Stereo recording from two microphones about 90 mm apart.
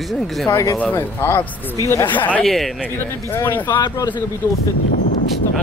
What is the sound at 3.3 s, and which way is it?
Speech, 25° left (ahead or behind).